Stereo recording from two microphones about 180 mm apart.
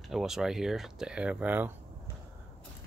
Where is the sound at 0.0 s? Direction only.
Centre (ahead or behind).